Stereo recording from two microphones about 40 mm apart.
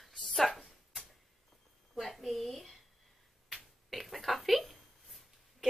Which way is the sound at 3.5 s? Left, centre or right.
Centre.